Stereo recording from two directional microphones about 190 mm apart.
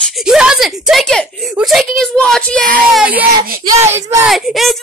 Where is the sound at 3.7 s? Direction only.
15° right (ahead or behind).